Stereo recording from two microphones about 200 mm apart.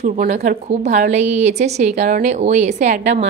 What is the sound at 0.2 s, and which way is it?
A woman's voice, 45° right (ahead or behind).